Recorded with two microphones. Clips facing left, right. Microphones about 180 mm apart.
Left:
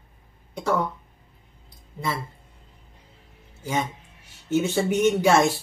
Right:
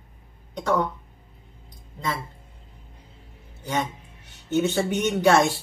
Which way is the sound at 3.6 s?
Centre (ahead or behind).